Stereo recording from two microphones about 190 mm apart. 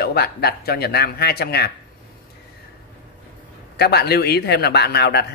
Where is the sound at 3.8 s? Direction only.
60° left (ahead or behind).